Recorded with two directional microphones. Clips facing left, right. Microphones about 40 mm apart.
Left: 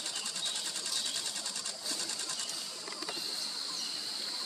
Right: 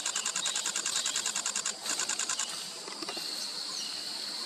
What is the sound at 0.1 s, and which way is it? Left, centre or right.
Sewing machine, right.